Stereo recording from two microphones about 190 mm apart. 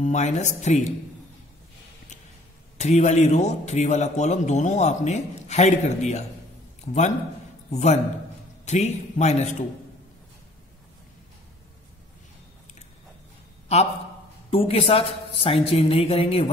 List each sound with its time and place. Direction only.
0.0 s a man's voice: 40° left (ahead or behind)
2.8 s a man's voice: 35° left (ahead or behind)
6.8 s a sound: 35° left (ahead or behind)
7.7 s a man's voice: 35° left (ahead or behind)
13.7 s a man's voice: 35° left (ahead or behind)